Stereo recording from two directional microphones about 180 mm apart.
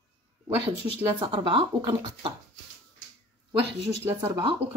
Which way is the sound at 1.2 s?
30° right (ahead or behind).